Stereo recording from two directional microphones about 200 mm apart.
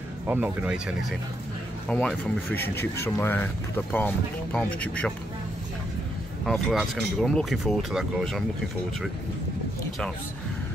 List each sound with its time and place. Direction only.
0.3 s speech: 10° right (ahead or behind)
1.9 s speech: 5° left (ahead or behind)
6.4 s speech: centre (ahead or behind)